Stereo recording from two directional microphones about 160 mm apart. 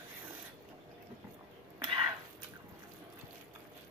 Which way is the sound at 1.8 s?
30° right (ahead or behind).